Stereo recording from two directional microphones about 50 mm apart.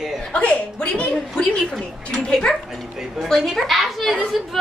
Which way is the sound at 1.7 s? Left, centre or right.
Centre.